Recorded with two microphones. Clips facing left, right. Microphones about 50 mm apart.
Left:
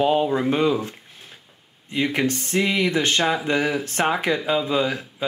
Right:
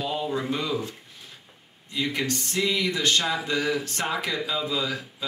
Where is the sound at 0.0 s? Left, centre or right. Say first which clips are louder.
Left 9 dB; left.